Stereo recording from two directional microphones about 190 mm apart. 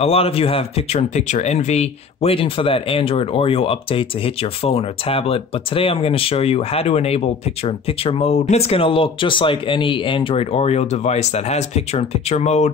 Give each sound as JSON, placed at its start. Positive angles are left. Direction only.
{"t": 0.0, "sound": "speech", "side_deg": 30}